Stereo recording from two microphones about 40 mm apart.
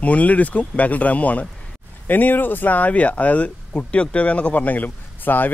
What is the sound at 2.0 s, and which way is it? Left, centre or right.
Speech, left.